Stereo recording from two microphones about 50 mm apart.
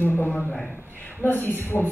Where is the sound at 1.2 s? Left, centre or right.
Left.